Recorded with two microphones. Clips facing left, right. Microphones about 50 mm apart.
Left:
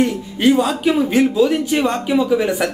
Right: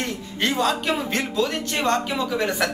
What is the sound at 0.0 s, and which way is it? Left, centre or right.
Speech, centre.